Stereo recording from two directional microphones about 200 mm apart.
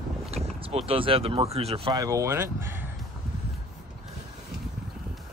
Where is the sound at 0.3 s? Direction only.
30° right (ahead or behind).